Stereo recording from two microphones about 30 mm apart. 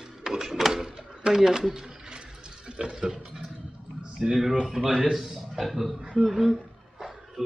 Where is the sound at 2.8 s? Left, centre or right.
Right.